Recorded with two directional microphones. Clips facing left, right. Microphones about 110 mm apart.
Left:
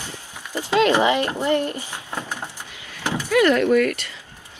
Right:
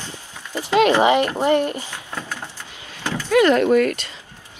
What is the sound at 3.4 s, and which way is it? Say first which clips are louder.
Speech: even; 25° right (ahead or behind).